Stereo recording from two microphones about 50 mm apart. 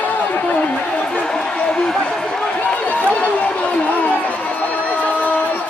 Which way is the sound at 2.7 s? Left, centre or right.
Left.